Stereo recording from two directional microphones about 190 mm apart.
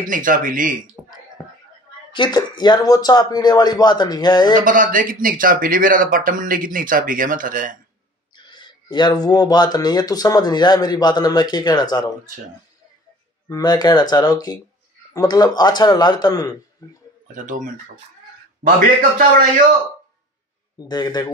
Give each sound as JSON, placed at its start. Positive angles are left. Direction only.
{"t": 0.0, "sound": "speech", "side_deg": -45}
{"t": 1.0, "sound": "a sound", "side_deg": -10}
{"t": 2.1, "sound": "speech", "side_deg": 25}
{"t": 4.6, "sound": "speech", "side_deg": -45}
{"t": 8.4, "sound": "a sound", "side_deg": 25}
{"t": 8.9, "sound": "speech", "side_deg": 20}
{"t": 13.5, "sound": "speech", "side_deg": 20}
{"t": 17.3, "sound": "speech", "side_deg": -45}
{"t": 18.9, "sound": "speech", "side_deg": -45}
{"t": 20.9, "sound": "speech", "side_deg": 20}